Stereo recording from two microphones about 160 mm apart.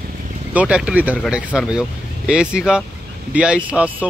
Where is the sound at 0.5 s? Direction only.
5° right (ahead or behind).